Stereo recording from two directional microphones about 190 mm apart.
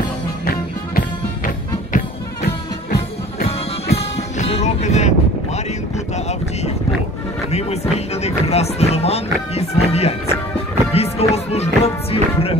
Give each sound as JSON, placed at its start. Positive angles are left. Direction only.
{"t": 0.5, "sound": "music", "side_deg": 50}
{"t": 3.9, "sound": "music", "side_deg": 30}
{"t": 6.1, "sound": "wind noise", "side_deg": 35}
{"t": 7.5, "sound": "music", "side_deg": 35}